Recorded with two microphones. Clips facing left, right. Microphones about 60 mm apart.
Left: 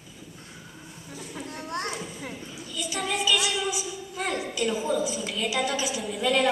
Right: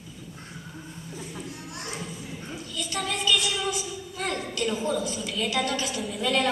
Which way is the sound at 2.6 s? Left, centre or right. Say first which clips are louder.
Left 1 dB; centre.